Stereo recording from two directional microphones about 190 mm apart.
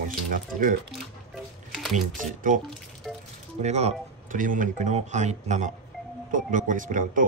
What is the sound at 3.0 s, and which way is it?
Music, centre (ahead or behind).